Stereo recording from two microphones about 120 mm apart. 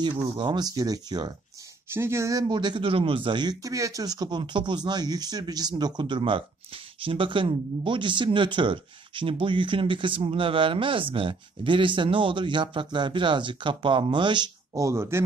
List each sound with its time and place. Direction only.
0.0 s speech: 40° right (ahead or behind)
1.9 s speech: 20° right (ahead or behind); by 14.8 s 40° right (ahead or behind)
14.8 s speech: 25° right (ahead or behind)